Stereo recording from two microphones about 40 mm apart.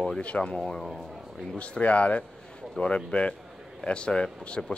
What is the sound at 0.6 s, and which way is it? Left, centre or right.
Speech, centre.